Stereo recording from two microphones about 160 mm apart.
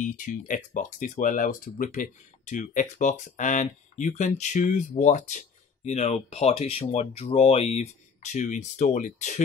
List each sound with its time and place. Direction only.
0.0 s speech: 55° left (ahead or behind)